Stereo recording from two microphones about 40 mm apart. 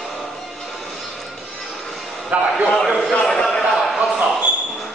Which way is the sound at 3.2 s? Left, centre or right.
Centre.